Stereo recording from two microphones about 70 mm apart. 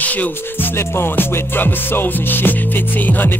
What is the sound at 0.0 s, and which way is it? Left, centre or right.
Music, left.